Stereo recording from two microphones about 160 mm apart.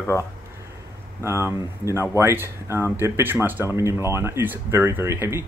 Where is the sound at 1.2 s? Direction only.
15° right (ahead or behind).